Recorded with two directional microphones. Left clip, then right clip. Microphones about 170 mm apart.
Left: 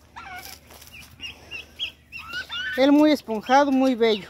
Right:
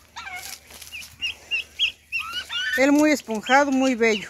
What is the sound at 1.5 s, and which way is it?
Bird, 50° left (ahead or behind).